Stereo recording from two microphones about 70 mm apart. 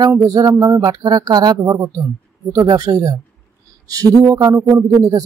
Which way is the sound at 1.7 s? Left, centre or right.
Right.